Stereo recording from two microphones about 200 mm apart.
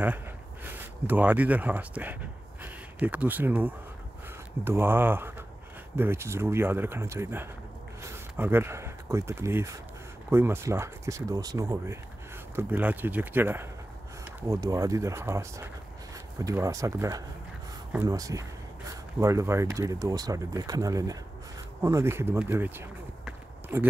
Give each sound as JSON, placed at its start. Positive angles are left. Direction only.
{"t": 0.7, "sound": "speech", "side_deg": -10}